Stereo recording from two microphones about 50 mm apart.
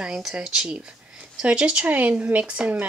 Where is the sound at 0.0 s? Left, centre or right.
Centre; by 2.4 s right.